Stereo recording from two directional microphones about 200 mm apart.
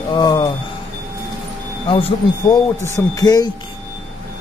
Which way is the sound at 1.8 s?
25° left (ahead or behind).